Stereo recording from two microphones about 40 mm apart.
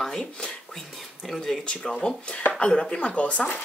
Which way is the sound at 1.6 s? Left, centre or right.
Left.